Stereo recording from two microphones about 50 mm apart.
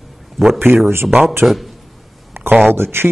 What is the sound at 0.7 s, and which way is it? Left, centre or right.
Speech, right.